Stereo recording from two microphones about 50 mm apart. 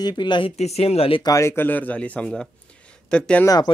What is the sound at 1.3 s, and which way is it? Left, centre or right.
Speech, left.